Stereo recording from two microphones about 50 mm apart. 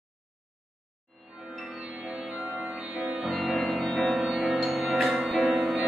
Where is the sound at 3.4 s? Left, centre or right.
Centre.